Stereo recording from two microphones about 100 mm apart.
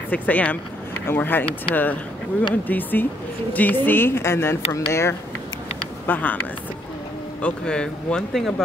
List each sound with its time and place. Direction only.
0.1 s speech: 15° left (ahead or behind)
6.0 s speech: 15° left (ahead or behind)
7.4 s speech: 10° left (ahead or behind)